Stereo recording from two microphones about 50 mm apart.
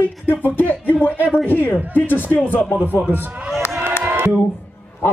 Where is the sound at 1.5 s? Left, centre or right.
Left.